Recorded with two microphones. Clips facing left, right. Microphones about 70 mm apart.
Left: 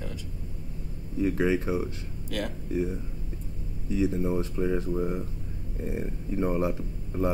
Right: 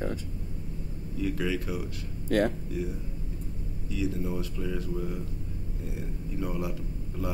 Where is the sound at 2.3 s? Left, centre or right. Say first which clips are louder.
Right 8 dB; right.